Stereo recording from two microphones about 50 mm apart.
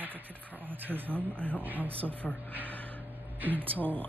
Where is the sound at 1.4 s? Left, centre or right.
Left.